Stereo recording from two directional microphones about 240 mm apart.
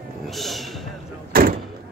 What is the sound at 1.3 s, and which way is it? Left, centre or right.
Door, right.